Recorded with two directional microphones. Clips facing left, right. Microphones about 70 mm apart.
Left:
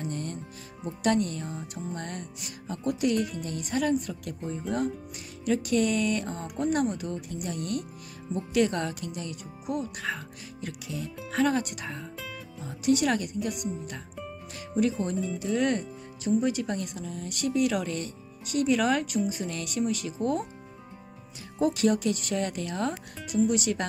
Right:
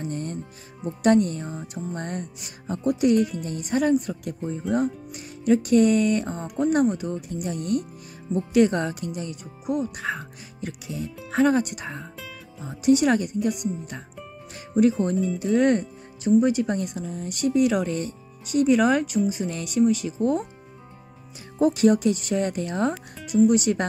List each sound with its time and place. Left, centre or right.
0.0 s music: right
1.0 s speech: right
4.4 s speech: centre
4.7 s speech: right
6.4 s speech: centre
6.7 s speech: centre
9.7 s speech: centre
10.0 s speech: right
15.3 s speech: right
21.5 s speech: right
23.1 s speech: centre
23.5 s speech: right